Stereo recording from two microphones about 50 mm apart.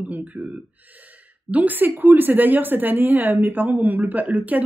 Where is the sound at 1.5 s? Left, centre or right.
Right.